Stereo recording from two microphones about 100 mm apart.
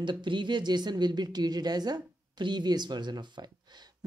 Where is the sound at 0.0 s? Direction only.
50° right (ahead or behind).